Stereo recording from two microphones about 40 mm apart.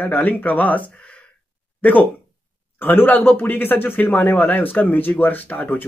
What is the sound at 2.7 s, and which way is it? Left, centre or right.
A man's voice, left.